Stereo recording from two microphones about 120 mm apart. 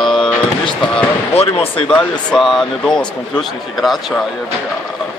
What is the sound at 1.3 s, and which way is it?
Speech, 55° left (ahead or behind).